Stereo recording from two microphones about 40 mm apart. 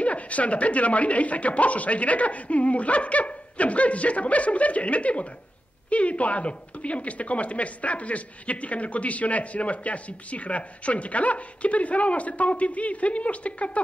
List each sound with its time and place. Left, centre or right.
0.0 s a woman's voice: left